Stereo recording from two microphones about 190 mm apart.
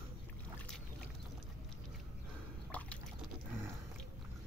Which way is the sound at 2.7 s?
10° left (ahead or behind).